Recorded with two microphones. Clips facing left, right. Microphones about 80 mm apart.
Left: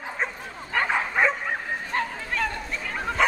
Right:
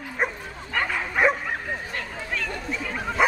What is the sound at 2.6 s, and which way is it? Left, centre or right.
Bow-wow, centre.